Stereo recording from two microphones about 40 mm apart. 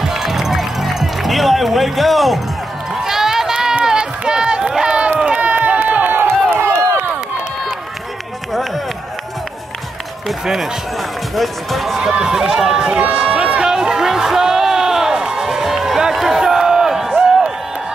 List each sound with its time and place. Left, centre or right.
0.0 s music: centre
3.0 s run: centre
5.2 s run: right
6.5 s run: right
10.4 s speech: centre
12.0 s speech: centre
13.2 s run: centre
13.7 s a sound: centre